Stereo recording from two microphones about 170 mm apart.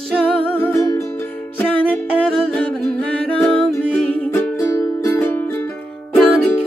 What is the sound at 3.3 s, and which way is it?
Music, 5° left (ahead or behind).